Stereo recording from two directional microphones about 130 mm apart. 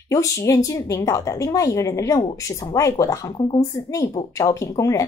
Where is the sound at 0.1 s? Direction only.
25° left (ahead or behind).